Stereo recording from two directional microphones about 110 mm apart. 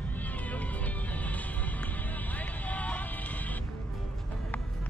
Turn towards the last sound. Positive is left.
turn(degrees=15)  # may be behind; listen again after turning